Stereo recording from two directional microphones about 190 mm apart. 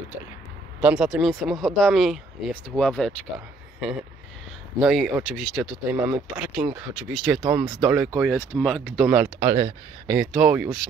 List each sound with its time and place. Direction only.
0.8 s speech: 5° right (ahead or behind)
9.4 s speech: 20° right (ahead or behind)
10.1 s speech: 5° right (ahead or behind)